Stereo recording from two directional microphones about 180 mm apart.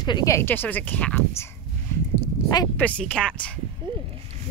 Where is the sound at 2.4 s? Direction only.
20° left (ahead or behind).